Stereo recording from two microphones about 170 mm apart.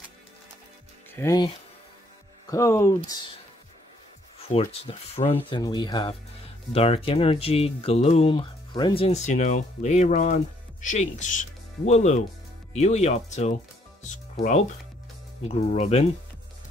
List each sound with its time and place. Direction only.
1.1 s speech: 20° left (ahead or behind)
2.5 s speech: 15° left (ahead or behind)
4.5 s speech: 35° left (ahead or behind)
5.6 s speech: 25° left (ahead or behind); by 13.6 s 45° left (ahead or behind)
15.4 s speech: 40° left (ahead or behind)